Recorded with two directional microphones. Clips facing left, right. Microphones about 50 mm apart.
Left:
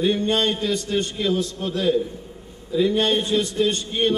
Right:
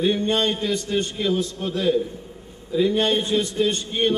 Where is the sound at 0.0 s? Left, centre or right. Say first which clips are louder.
Even; right.